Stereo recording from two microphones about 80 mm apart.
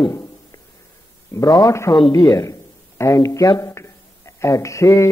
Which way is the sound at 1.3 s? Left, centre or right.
Left.